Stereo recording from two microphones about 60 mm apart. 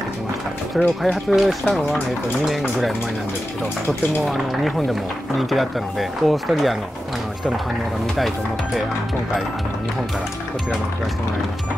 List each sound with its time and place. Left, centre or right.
0.7 s speech: centre
4.3 s speech: centre